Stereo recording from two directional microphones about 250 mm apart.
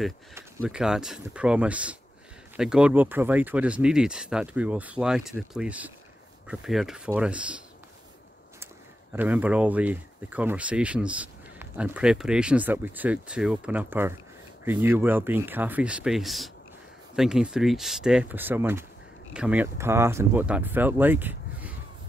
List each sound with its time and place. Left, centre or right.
0.3 s speech: centre
9.1 s speech: centre